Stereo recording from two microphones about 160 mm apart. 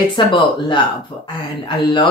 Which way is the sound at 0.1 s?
30° left (ahead or behind).